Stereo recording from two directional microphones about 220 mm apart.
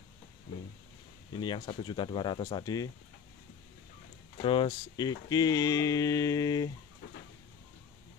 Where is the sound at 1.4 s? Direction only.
20° left (ahead or behind).